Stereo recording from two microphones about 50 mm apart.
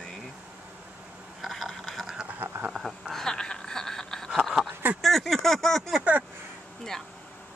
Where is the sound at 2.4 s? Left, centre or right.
Right.